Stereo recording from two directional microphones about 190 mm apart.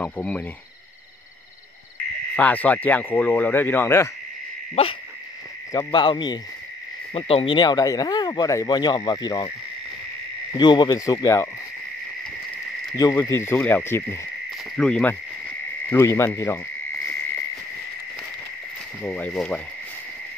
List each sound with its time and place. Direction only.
0.0 s speech: 10° left (ahead or behind)
2.3 s speech: 5° left (ahead or behind)
5.7 s speech: 20° left (ahead or behind)
10.5 s speech: 25° left (ahead or behind)
12.9 s speech: 15° left (ahead or behind)
14.8 s cricket: 5° left (ahead or behind)
15.9 s speech: 15° left (ahead or behind)
19.0 s speech: 5° left (ahead or behind)